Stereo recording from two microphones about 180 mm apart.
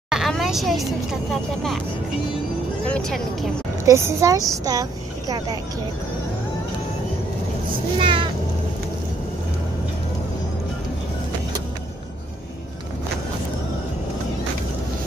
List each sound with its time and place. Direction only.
0.1 s vehicle: centre (ahead or behind)
2.8 s speech: 5° left (ahead or behind)
3.8 s a woman's voice: 15° right (ahead or behind)
8.0 s cat: 30° right (ahead or behind)